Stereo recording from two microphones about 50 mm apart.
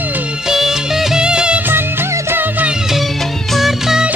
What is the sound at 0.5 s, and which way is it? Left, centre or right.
Music of bollywood, centre.